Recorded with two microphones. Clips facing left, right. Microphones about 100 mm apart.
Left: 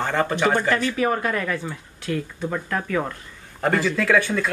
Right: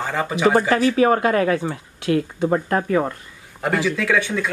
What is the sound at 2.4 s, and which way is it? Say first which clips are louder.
Speech: right 7 dB; 35° right (ahead or behind).